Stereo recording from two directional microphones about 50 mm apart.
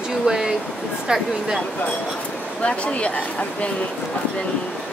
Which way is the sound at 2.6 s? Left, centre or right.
Left.